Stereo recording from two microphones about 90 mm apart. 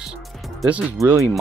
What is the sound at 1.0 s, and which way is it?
Speech, 40° right (ahead or behind).